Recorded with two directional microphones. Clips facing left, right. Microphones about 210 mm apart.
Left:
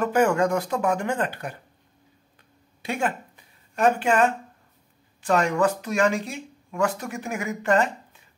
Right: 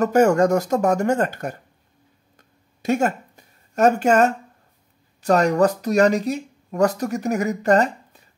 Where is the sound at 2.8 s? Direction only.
45° right (ahead or behind).